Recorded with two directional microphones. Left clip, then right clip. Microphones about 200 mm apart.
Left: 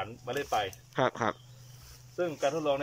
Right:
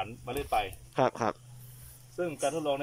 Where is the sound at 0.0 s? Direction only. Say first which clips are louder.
Left 1 dB; 10° right (ahead or behind).